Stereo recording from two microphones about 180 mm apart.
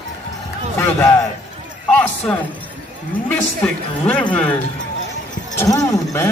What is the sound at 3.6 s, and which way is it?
Speech, 5° left (ahead or behind).